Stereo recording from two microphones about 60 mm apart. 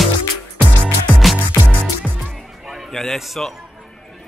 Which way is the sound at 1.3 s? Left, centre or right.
Right.